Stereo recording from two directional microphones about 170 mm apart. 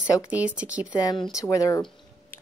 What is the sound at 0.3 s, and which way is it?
Speech, 10° right (ahead or behind).